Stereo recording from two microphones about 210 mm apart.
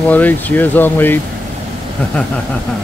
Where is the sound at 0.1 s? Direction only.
10° left (ahead or behind).